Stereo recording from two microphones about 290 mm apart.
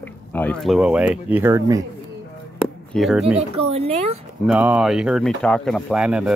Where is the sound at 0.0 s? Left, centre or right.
Centre.